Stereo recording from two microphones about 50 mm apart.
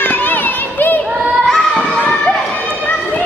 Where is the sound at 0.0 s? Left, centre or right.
Left.